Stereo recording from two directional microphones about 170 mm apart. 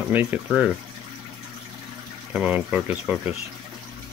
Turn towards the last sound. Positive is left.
turn(degrees=-10)  # may be behind; listen again after turning